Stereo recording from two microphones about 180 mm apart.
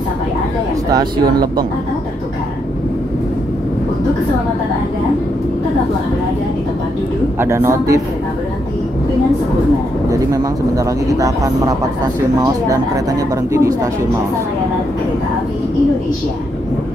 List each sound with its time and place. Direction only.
1.1 s speech: 55° right (ahead or behind)
7.3 s a man's voice: 15° right (ahead or behind)
10.0 s speech: 20° right (ahead or behind)